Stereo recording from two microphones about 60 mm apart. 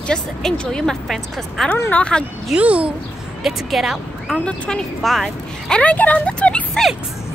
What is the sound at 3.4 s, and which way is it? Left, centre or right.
Speech, centre.